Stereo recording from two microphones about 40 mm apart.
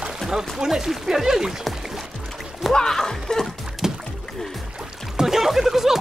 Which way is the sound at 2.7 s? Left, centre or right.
Centre.